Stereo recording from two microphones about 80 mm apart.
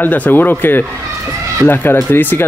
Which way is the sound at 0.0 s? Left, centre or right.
Left.